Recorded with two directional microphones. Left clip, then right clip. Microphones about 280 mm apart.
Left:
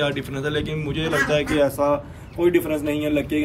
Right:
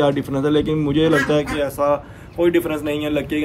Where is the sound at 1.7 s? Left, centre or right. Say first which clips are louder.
Right 2 dB; centre.